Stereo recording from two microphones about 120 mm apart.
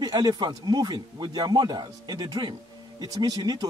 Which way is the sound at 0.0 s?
35° right (ahead or behind).